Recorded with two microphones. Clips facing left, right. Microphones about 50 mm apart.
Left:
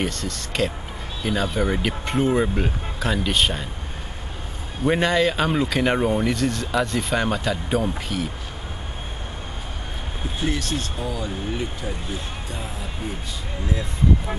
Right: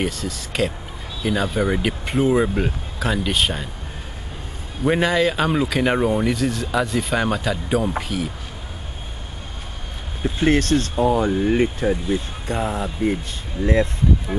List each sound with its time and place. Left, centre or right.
0.0 s speech: centre
4.8 s speech: centre
10.4 s speech: right